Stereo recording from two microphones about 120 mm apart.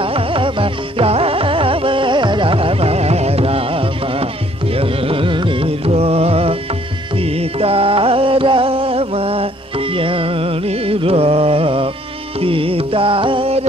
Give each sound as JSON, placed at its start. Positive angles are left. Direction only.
{"t": 0.0, "sound": "music", "side_deg": -50}